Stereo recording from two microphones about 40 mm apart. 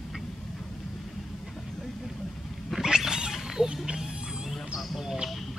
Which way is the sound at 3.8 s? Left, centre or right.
Centre.